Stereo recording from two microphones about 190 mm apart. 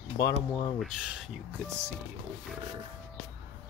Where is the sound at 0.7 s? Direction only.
Centre (ahead or behind).